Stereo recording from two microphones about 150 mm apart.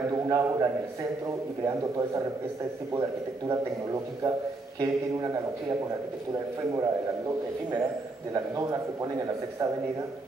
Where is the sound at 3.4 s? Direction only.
25° right (ahead or behind).